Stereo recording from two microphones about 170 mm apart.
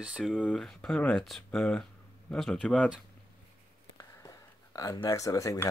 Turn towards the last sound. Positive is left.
turn(degrees=20)  # may be behind; listen again after turning